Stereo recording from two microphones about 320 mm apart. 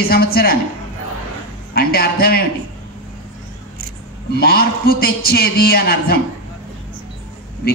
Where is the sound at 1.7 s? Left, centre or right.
Left.